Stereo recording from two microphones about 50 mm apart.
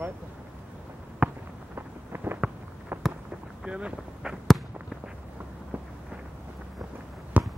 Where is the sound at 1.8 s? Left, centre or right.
Right.